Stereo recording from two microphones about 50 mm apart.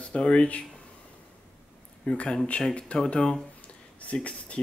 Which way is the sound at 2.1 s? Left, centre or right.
Centre.